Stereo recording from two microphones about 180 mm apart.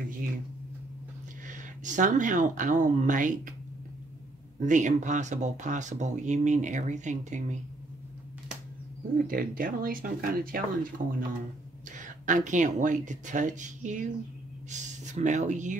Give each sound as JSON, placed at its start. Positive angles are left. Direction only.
{"t": 1.5, "sound": "speech", "side_deg": -45}
{"t": 4.6, "sound": "speech", "side_deg": -45}
{"t": 9.3, "sound": "speech", "side_deg": -50}